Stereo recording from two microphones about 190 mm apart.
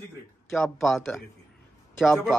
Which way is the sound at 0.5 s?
5° left (ahead or behind).